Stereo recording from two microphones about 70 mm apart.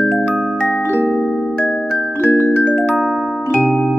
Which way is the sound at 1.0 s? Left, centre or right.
Centre.